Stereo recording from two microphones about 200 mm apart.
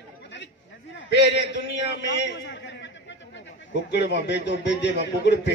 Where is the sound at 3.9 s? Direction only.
60° left (ahead or behind).